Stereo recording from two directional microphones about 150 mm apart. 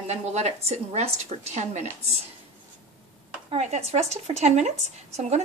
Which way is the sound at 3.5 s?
45° right (ahead or behind).